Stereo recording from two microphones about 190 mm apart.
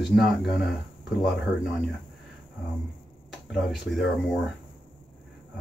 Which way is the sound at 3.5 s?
Centre (ahead or behind).